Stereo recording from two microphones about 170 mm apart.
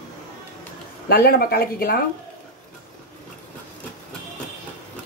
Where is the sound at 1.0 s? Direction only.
65° left (ahead or behind).